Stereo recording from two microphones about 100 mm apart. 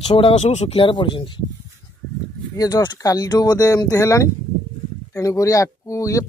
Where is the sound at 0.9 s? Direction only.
55° left (ahead or behind).